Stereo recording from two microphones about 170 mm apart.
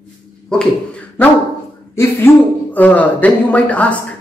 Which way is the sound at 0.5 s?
5° left (ahead or behind).